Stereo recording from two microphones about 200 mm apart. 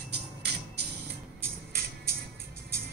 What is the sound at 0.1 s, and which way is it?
Music, 55° right (ahead or behind).